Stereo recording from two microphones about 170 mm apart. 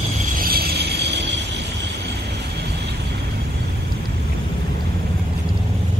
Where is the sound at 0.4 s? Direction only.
65° right (ahead or behind); by 1.2 s 85° right.